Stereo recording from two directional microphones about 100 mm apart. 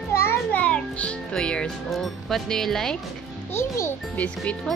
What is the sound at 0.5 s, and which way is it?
A child's voice, 15° left (ahead or behind).